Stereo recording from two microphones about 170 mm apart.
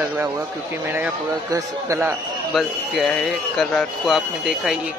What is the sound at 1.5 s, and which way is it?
Speech, 15° right (ahead or behind).